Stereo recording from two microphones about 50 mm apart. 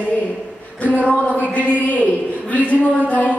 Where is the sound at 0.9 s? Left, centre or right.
Left.